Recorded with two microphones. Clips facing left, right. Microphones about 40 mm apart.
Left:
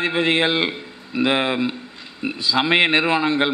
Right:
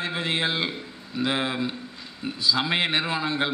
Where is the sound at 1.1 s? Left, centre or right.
Left.